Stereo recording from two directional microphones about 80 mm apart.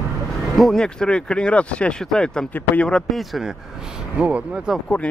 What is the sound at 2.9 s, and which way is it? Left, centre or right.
Speech, centre.